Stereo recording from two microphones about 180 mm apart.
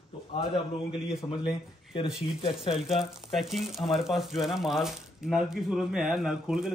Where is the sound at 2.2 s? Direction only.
30° left (ahead or behind).